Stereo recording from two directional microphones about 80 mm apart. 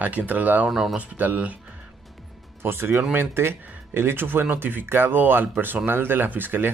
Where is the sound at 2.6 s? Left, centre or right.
Right.